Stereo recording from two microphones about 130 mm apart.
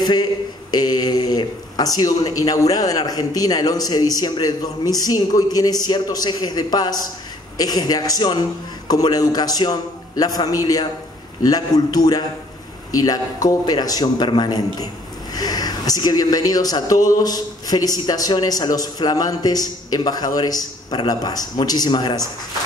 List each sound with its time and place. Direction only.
0.0 s a man's voice: 30° left (ahead or behind)